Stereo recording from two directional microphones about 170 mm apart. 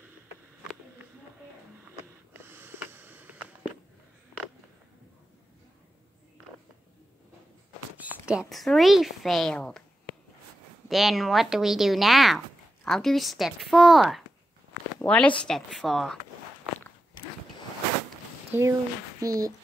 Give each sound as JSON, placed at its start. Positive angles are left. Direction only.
{"t": 2.4, "sound": "a sound", "side_deg": -15}
{"t": 8.0, "sound": "a woman's voice", "side_deg": -5}
{"t": 10.9, "sound": "a woman's voice", "side_deg": 0}
{"t": 18.5, "sound": "speech", "side_deg": -15}